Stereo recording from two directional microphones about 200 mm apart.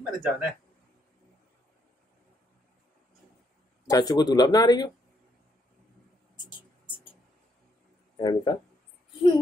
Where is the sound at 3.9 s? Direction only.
20° left (ahead or behind).